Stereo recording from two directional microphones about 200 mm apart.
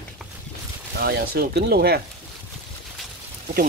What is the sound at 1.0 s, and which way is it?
Speech, 50° right (ahead or behind).